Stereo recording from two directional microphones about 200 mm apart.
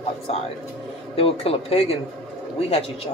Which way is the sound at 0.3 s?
30° left (ahead or behind).